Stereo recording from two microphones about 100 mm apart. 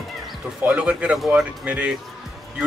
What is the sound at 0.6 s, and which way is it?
A man's voice, 10° right (ahead or behind).